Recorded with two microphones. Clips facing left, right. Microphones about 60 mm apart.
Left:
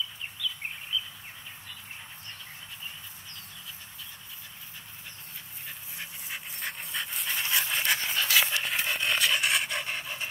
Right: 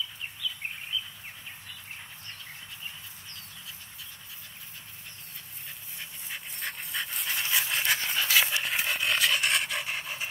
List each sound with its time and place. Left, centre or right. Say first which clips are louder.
0.4 s bird: left 2 dB; centre
6.3 s dog: even; centre
8.6 s pant: even; centre